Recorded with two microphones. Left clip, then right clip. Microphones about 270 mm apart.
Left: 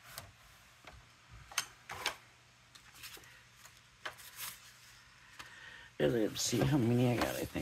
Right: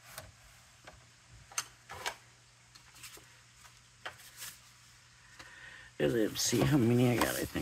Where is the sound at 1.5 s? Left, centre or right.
Left.